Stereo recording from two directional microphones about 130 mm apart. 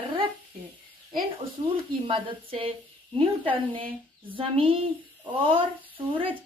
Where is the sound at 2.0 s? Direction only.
40° right (ahead or behind).